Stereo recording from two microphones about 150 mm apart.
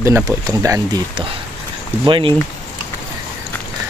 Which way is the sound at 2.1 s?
35° right (ahead or behind).